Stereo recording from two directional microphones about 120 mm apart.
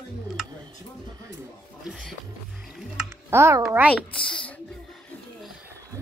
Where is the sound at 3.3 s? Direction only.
20° right (ahead or behind).